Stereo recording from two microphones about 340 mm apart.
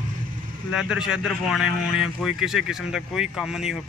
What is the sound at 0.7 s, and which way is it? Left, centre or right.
Speech, centre.